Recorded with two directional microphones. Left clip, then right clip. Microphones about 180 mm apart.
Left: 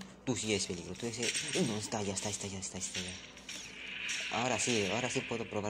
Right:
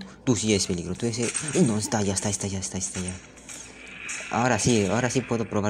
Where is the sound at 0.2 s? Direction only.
60° right (ahead or behind).